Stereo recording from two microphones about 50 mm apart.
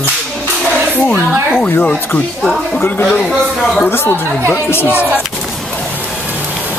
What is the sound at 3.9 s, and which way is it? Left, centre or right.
Speech, left.